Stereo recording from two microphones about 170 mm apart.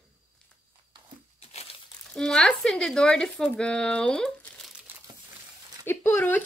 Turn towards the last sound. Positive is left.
turn(degrees=10)  # may be behind; listen again after turning